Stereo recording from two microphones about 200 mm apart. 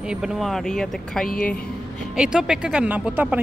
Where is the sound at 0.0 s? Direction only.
5° right (ahead or behind).